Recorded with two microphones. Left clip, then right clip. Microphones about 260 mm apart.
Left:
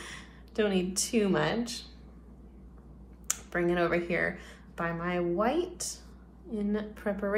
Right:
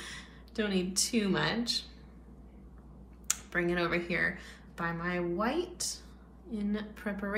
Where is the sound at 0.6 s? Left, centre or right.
Centre.